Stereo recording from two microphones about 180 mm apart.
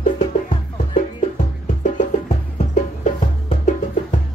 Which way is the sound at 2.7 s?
40° left (ahead or behind).